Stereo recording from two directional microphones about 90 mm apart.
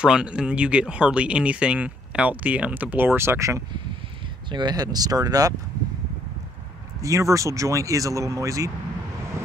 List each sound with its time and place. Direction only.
0.0 s speech: 10° right (ahead or behind); by 3.6 s 35° right (ahead or behind)
4.5 s speech: 55° right (ahead or behind)
7.0 s speech: 35° right (ahead or behind)